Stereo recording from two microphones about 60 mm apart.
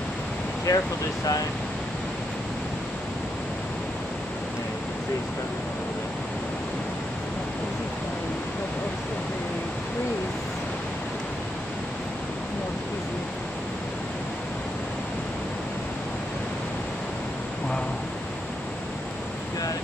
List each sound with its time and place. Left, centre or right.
0.7 s speech: left